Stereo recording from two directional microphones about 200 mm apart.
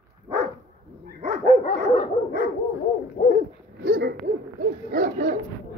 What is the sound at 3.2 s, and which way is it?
Dog, 40° left (ahead or behind).